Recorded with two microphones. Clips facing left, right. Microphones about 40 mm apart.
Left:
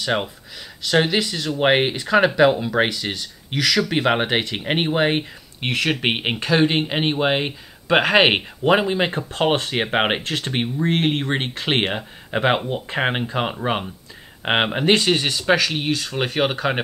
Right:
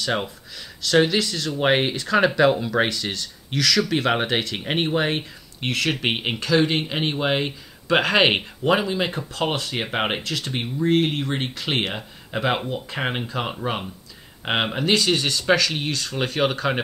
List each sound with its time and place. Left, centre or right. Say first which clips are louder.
0.8 s speech: even; centre
8.8 s speech: left 3 dB; left; by 16.7 s centre